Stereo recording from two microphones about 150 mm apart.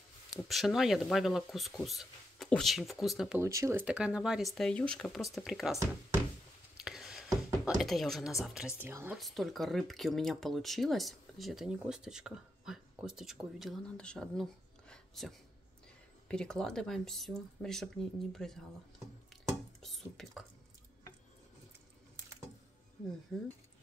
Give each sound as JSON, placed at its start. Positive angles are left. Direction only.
{"t": 0.3, "sound": "speech", "side_deg": 0}
{"t": 3.3, "sound": "speech", "side_deg": -20}
{"t": 3.8, "sound": "speech", "side_deg": -5}
{"t": 6.8, "sound": "a sound", "side_deg": 0}
{"t": 7.6, "sound": "speech", "side_deg": 0}
{"t": 9.1, "sound": "speech", "side_deg": 0}
{"t": 19.8, "sound": "speech", "side_deg": 0}
{"t": 23.3, "sound": "speech", "side_deg": 5}